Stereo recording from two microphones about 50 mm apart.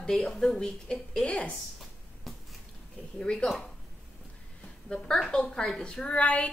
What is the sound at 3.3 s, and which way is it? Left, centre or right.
Speech, left.